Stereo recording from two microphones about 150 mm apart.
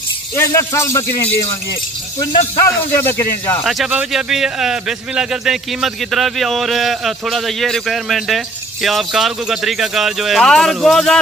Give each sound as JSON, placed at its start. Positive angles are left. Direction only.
{"t": 0.4, "sound": "speech", "side_deg": 20}
{"t": 2.1, "sound": "speech", "side_deg": 15}
{"t": 3.6, "sound": "a man's voice", "side_deg": -5}